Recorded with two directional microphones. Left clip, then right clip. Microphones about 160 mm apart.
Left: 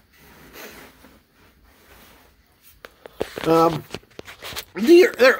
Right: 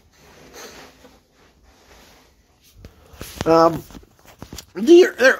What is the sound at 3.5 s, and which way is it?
Speech, 10° left (ahead or behind).